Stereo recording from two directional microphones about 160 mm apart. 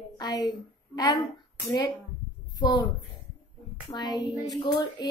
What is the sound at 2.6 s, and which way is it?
Speech, 25° left (ahead or behind).